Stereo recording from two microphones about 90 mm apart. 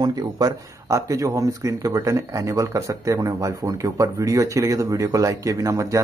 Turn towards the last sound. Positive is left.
turn(degrees=-35)  # may be behind; listen again after turning